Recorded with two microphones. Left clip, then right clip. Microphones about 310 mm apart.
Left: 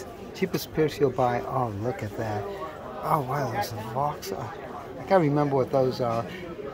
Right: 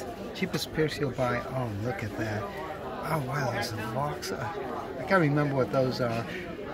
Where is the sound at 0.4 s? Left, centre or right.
Centre.